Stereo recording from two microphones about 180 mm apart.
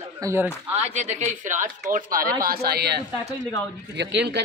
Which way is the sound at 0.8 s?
40° right (ahead or behind).